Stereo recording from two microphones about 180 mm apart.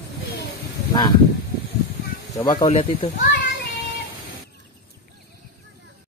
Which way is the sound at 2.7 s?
30° left (ahead or behind).